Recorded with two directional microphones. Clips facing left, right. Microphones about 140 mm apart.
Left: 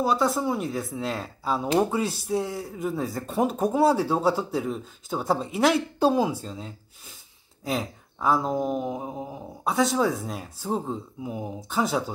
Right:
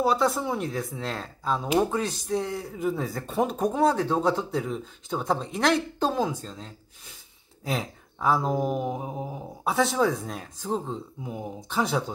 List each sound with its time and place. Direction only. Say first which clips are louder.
0.0 s speech: even; centre (ahead or behind)